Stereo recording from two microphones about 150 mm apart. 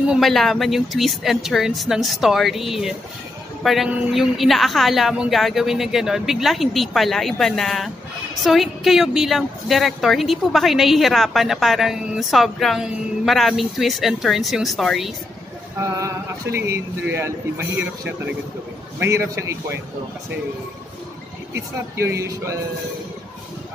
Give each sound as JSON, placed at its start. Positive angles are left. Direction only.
{"t": 0.0, "sound": "a woman's voice", "side_deg": 0}
{"t": 15.8, "sound": "speech", "side_deg": -20}
{"t": 21.5, "sound": "speech", "side_deg": -20}